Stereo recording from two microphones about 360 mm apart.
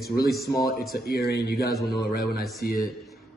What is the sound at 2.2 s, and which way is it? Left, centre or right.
Speech, centre.